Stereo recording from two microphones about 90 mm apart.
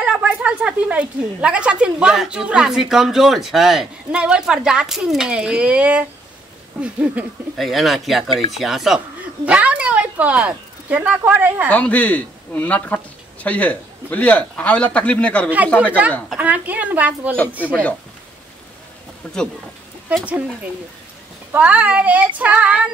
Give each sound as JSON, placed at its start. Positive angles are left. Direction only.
{"t": 0.0, "sound": "speech", "side_deg": -15}
{"t": 7.5, "sound": "speech", "side_deg": 0}
{"t": 9.5, "sound": "speech", "side_deg": -15}
{"t": 11.7, "sound": "speech", "side_deg": 15}
{"t": 16.3, "sound": "speech", "side_deg": -15}
{"t": 17.6, "sound": "speech", "side_deg": 20}
{"t": 19.2, "sound": "speech", "side_deg": 10}
{"t": 21.5, "sound": "speech", "side_deg": -15}